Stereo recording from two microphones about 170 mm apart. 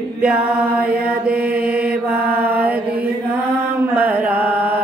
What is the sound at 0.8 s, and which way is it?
Mantra, 65° right (ahead or behind).